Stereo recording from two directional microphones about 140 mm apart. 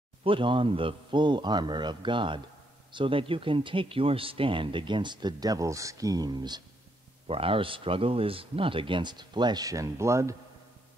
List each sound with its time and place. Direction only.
0.2 s speech: 40° right (ahead or behind)
7.2 s speech: 40° right (ahead or behind); by 10.3 s 20° right (ahead or behind)